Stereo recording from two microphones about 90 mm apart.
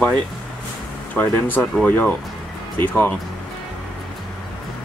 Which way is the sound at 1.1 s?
20° left (ahead or behind).